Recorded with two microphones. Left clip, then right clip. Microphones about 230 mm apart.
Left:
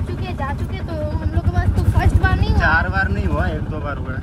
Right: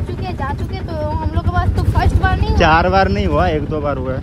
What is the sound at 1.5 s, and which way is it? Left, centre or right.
Speech, centre.